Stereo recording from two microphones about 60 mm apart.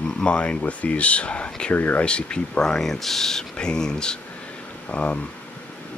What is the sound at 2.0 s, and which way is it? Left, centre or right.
Speech, centre.